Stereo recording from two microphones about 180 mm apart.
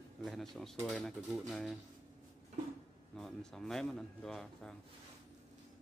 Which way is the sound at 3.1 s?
5° left (ahead or behind).